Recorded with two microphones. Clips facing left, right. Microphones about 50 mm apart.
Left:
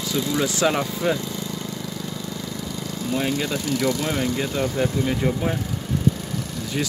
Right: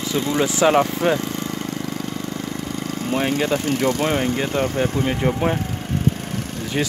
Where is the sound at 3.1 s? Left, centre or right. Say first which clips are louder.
Right 4 dB; right.